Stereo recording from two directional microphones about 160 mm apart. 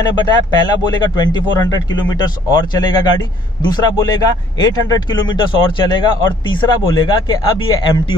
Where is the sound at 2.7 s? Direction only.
25° left (ahead or behind).